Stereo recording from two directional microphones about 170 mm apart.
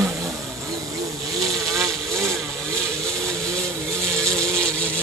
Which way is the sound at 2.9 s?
5° left (ahead or behind).